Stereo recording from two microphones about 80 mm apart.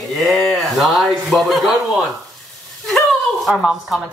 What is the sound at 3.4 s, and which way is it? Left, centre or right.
Speech, centre.